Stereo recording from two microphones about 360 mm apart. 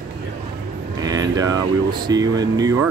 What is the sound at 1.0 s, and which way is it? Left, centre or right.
Speech, centre.